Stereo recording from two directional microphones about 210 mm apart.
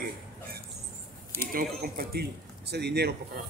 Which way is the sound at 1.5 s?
45° right (ahead or behind).